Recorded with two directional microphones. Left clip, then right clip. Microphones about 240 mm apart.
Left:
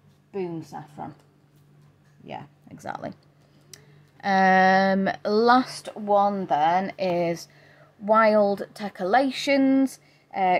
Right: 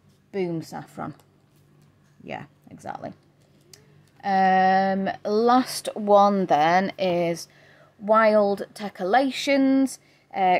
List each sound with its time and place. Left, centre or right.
0.3 s speech: right
2.7 s speech: centre
5.6 s speech: right
7.0 s speech: centre